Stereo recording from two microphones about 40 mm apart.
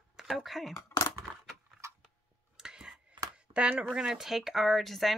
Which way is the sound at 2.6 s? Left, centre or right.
Centre.